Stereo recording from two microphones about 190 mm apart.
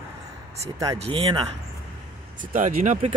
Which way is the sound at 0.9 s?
30° right (ahead or behind).